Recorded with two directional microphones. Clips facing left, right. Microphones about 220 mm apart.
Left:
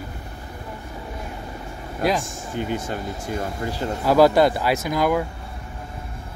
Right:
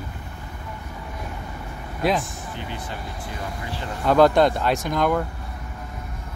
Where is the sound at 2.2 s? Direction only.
45° left (ahead or behind).